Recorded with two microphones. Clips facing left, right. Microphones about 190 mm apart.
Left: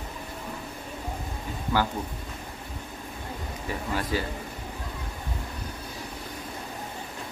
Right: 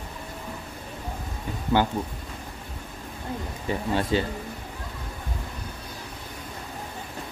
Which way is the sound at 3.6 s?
25° right (ahead or behind).